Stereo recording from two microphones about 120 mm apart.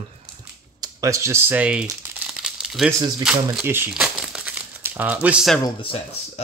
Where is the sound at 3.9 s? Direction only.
5° right (ahead or behind).